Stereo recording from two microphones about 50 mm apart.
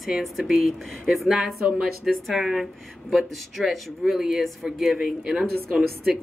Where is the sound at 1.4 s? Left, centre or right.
Centre.